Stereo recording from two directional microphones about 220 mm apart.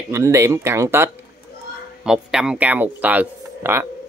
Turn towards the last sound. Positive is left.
turn(degrees=-10)  # may be behind; listen again after turning